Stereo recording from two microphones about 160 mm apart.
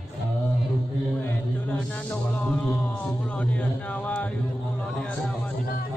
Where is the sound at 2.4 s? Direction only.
10° left (ahead or behind).